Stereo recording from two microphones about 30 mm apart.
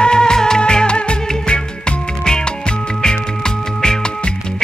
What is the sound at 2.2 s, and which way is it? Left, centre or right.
Music, left.